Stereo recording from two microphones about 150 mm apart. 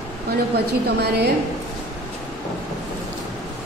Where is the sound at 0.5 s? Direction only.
90° right.